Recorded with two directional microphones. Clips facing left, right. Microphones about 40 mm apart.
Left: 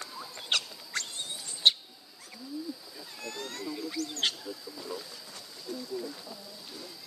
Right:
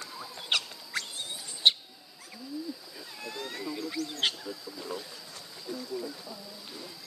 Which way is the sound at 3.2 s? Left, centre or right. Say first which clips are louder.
Right 1 dB; centre.